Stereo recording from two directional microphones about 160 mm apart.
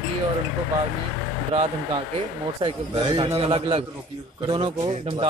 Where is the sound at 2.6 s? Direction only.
35° right (ahead or behind).